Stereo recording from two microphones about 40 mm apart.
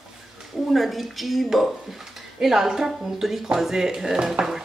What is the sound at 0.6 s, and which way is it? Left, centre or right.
Speech, centre.